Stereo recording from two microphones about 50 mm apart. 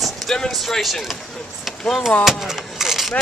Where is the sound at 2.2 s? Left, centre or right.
Centre.